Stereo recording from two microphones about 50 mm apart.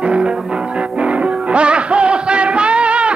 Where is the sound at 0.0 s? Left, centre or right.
Right.